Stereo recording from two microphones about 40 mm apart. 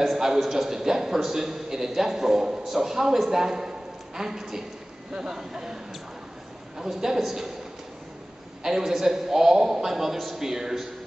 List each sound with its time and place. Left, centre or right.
0.0 s a man's voice: centre
6.8 s a man's voice: centre
8.6 s a man's voice: centre